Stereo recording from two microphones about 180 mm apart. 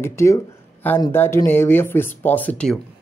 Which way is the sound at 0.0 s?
15° left (ahead or behind).